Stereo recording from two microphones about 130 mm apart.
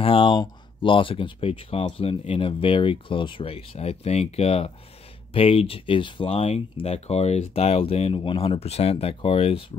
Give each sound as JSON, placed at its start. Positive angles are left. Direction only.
{"t": 0.0, "sound": "speech", "side_deg": 40}
{"t": 6.3, "sound": "speech", "side_deg": 55}